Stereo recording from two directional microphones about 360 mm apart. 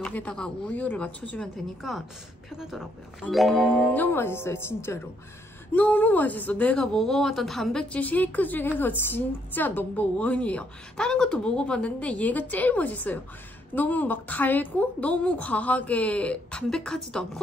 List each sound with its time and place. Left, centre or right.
0.0 s speech: centre